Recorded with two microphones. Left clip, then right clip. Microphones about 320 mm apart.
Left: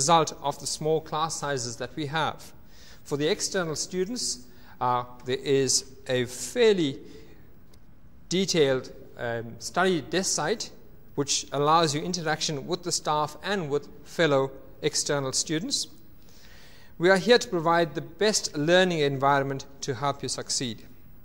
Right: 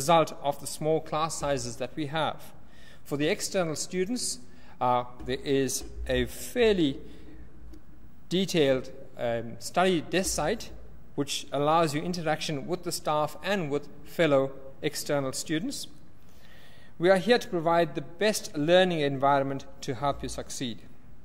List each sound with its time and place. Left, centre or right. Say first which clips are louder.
0.0 s a man's voice: left 1 dB; left
8.3 s a man's voice: left 2 dB; left
17.0 s a man's voice: left 2 dB; left